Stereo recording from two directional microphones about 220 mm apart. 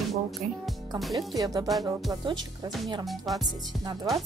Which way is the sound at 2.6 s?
Centre (ahead or behind).